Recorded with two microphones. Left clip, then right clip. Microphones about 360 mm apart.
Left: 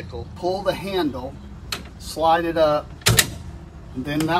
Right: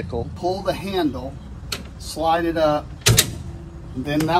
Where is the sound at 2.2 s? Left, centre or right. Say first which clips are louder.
Left 1 dB; centre.